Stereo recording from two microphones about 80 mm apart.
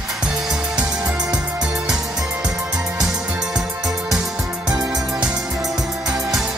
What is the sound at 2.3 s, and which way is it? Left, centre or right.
Music, centre.